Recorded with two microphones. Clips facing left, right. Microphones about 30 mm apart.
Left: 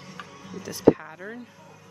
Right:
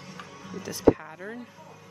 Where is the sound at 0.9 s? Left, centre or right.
Centre.